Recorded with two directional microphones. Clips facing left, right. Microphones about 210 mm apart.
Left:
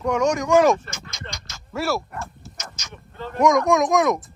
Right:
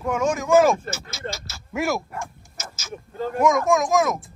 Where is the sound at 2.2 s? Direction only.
5° right (ahead or behind).